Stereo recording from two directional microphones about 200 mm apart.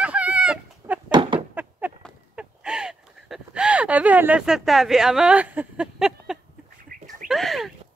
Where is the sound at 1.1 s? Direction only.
25° right (ahead or behind).